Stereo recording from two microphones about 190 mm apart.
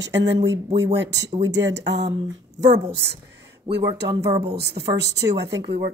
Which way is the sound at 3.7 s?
25° right (ahead or behind).